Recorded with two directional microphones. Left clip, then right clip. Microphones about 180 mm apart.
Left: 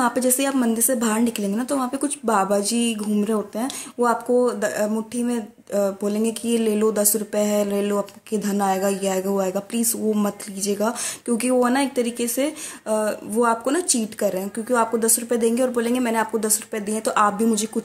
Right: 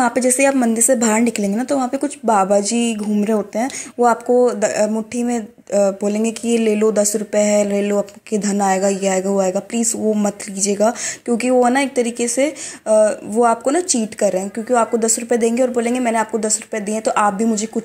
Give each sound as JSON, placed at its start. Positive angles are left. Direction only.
{"t": 0.0, "sound": "a woman's voice", "side_deg": -15}